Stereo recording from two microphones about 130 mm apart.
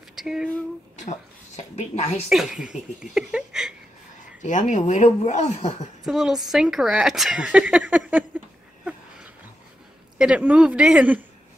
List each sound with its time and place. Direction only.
0.1 s a sound: 5° right (ahead or behind)
1.6 s a woman's voice: 60° left (ahead or behind)
2.2 s speech: 5° right (ahead or behind)
4.4 s speech: 70° left (ahead or behind)
6.0 s speech: 5° right (ahead or behind)
10.1 s speech: 10° right (ahead or behind)